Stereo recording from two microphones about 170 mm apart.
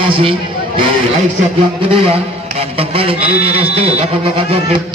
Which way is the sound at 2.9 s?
35° right (ahead or behind).